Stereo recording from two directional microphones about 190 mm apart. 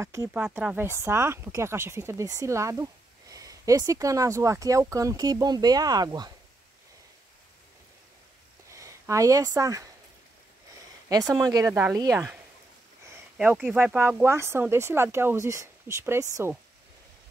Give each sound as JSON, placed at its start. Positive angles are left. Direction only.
{"t": 0.0, "sound": "speech", "side_deg": -15}
{"t": 8.6, "sound": "speech", "side_deg": -15}
{"t": 11.4, "sound": "speech", "side_deg": -15}
{"t": 13.4, "sound": "speech", "side_deg": -5}